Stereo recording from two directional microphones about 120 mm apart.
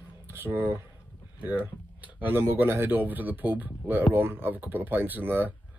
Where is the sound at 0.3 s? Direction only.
20° right (ahead or behind).